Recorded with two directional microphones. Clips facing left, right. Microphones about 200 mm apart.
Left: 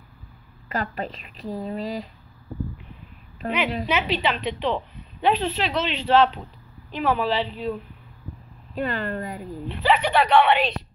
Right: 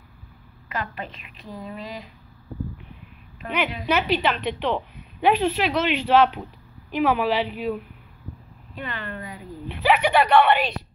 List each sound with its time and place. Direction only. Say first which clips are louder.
0.7 s a woman's voice: left 3 dB; 35° left (ahead or behind)
3.4 s a woman's voice: left 3 dB; 40° left (ahead or behind)
3.8 s a woman's voice: right 2 dB; 5° right (ahead or behind)
8.7 s a woman's voice: left 7 dB; 40° left (ahead or behind)
9.7 s a woman's voice: right 1 dB; 10° right (ahead or behind)